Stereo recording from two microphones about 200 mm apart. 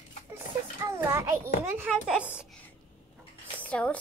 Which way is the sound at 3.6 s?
5° left (ahead or behind).